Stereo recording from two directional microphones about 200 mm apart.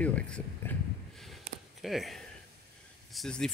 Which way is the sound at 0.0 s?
5° left (ahead or behind).